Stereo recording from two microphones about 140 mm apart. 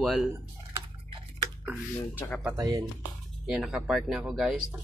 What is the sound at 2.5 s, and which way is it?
Speech, 25° right (ahead or behind).